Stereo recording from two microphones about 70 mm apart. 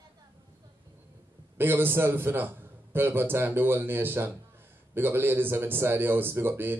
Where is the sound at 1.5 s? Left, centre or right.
Right.